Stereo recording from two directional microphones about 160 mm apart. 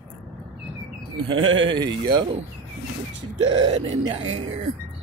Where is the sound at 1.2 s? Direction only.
30° right (ahead or behind).